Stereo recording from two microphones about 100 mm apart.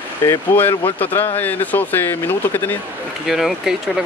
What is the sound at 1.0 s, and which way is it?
Speech, 20° left (ahead or behind).